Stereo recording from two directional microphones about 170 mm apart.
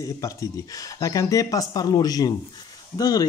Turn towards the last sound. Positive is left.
turn(degrees=20)  # may be behind; listen again after turning